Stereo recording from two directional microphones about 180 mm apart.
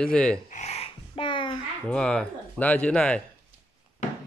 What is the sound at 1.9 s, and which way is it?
Speech, 5° left (ahead or behind).